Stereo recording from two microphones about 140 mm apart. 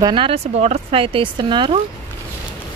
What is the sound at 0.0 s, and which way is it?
Speech, 35° right (ahead or behind).